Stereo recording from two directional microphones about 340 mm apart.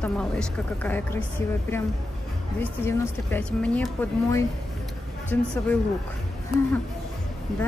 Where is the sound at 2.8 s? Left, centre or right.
Centre.